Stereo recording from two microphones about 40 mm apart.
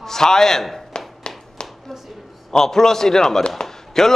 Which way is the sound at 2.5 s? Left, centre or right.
Centre.